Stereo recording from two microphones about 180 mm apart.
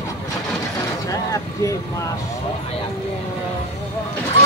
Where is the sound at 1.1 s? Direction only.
20° left (ahead or behind).